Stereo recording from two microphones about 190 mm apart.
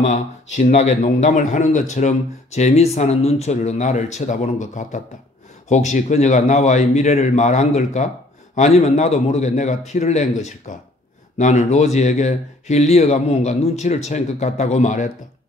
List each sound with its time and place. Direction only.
0.0 s a man's voice: 40° left (ahead or behind)